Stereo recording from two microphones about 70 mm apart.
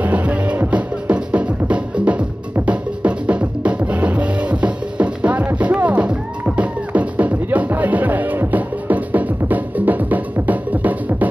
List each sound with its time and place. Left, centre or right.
0.0 s music: right